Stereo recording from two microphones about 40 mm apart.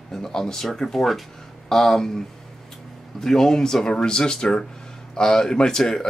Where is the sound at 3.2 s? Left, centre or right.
Centre.